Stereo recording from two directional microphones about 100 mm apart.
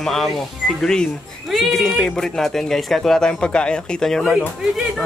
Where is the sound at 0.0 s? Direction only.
5° left (ahead or behind).